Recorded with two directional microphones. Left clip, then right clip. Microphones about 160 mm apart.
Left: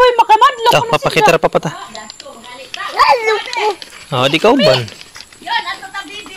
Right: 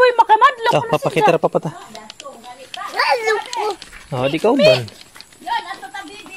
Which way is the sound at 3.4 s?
40° right (ahead or behind).